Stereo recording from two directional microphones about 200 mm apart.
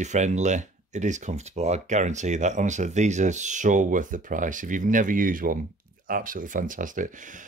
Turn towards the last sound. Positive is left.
turn(degrees=-40)  # may be behind; listen again after turning